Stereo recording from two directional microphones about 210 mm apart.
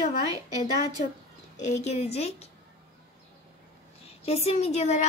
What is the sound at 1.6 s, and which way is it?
Speech, 30° left (ahead or behind).